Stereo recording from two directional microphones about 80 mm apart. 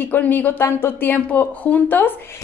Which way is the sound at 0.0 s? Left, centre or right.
Left.